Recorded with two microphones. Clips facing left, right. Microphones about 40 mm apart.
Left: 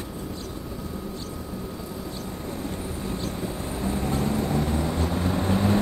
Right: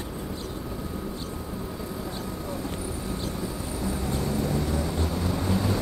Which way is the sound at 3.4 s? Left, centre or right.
Left.